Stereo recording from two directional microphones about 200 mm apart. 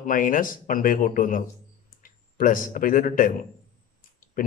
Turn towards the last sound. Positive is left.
turn(degrees=45)  # may be behind; listen again after turning